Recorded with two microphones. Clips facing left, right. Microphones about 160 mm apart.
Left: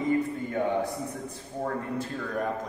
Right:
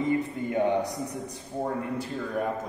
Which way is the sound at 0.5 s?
20° right (ahead or behind).